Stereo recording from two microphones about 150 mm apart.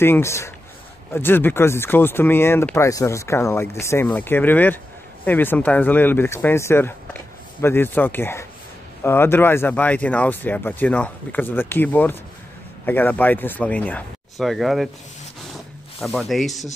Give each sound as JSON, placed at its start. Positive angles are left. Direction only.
{"t": 0.0, "sound": "speech", "side_deg": 15}
{"t": 16.0, "sound": "speech", "side_deg": 0}